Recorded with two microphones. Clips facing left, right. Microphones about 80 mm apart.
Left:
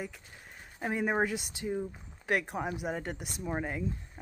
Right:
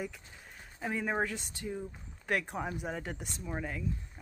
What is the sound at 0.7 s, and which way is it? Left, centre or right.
Speech, left.